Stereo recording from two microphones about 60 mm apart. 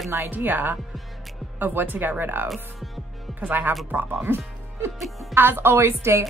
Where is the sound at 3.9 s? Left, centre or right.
Right.